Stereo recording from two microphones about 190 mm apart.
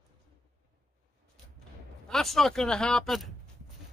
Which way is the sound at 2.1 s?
Centre (ahead or behind).